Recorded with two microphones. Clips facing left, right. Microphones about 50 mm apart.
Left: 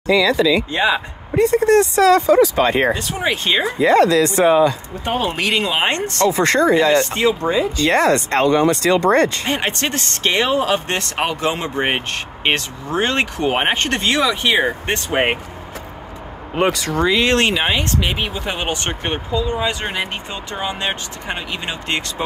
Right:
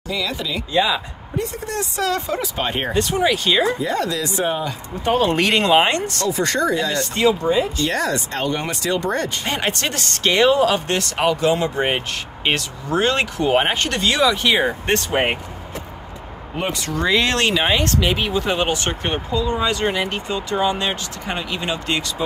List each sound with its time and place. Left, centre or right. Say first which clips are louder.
0.1 s speech: left 10 dB; left
0.7 s speech: left 1 dB; left
1.3 s speech: left 12 dB; left
2.9 s speech: right 1 dB; centre
3.3 s speech: left 3 dB; left
3.8 s speech: left 9 dB; left
5.0 s speech: right 3 dB; centre
5.9 s speech: left 3 dB; left
9.5 s speech: left 2 dB; left
16.5 s speech: left 7 dB; left
17.0 s speech: left 2 dB; centre
17.3 s speech: left 3 dB; left
17.6 s speech: right 1 dB; centre
18.7 s speech: even; left